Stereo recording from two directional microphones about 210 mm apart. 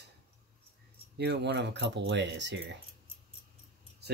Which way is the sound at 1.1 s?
50° right (ahead or behind).